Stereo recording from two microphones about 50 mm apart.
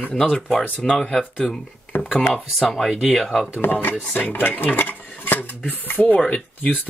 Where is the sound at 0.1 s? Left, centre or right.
Centre.